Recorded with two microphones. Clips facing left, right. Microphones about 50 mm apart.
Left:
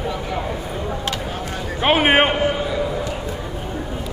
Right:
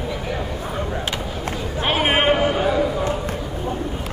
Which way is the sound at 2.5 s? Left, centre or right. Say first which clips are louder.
Right 3 dB; right.